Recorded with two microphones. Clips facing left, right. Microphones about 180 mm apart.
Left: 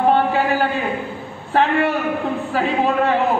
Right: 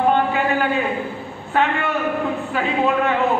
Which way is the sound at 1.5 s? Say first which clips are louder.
Left 3 dB; 35° left (ahead or behind).